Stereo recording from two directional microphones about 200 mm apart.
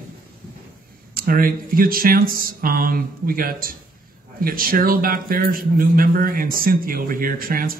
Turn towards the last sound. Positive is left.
turn(degrees=-45)  # may be behind; listen again after turning